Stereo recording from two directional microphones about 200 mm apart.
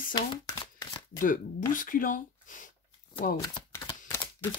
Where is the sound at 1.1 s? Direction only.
40° left (ahead or behind).